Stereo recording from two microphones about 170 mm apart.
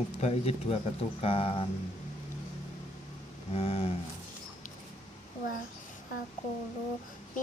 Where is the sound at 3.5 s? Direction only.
35° left (ahead or behind).